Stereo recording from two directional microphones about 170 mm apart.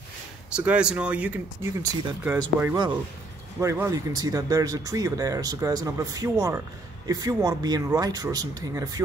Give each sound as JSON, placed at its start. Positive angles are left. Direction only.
{"t": 0.6, "sound": "speech", "side_deg": -5}
{"t": 1.8, "sound": "speech", "side_deg": -20}